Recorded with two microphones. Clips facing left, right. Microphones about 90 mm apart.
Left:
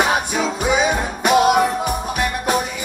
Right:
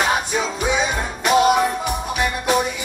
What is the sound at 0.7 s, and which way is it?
Music, 55° left (ahead or behind).